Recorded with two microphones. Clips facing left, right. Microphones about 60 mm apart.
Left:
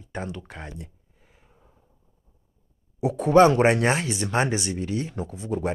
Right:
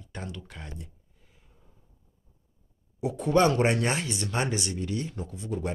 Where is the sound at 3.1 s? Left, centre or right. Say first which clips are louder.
Left 6 dB; left.